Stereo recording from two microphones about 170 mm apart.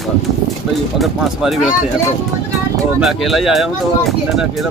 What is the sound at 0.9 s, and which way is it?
Speech, centre (ahead or behind).